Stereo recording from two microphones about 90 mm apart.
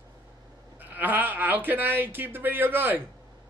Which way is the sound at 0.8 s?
20° right (ahead or behind).